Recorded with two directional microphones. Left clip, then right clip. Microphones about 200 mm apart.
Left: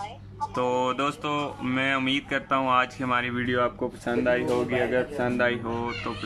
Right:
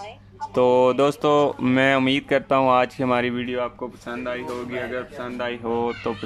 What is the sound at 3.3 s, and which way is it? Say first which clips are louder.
Speech: left 1 dB; 5° right (ahead or behind).